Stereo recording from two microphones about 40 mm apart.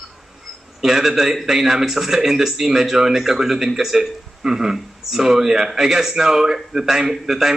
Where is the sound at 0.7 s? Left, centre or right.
Centre.